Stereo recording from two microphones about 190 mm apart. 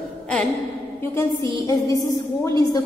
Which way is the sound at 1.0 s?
15° left (ahead or behind).